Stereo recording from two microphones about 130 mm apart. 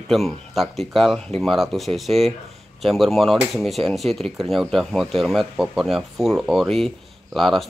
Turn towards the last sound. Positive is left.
turn(degrees=0)  # may be behind; listen again after turning